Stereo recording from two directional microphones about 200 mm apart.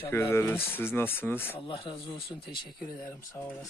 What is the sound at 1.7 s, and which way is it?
Speech, 25° left (ahead or behind).